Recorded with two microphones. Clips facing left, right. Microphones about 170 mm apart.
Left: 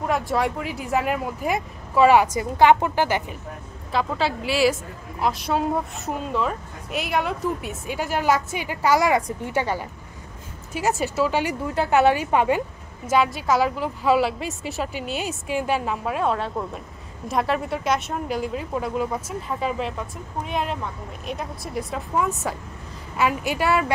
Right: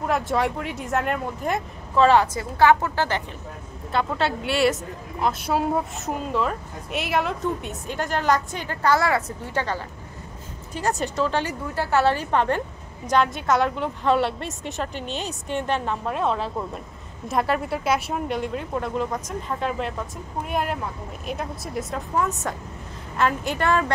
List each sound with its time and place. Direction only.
0.3 s speech: centre (ahead or behind)
3.9 s a woman's voice: centre (ahead or behind)